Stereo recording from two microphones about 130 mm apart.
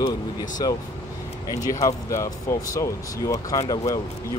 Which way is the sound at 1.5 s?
25° left (ahead or behind).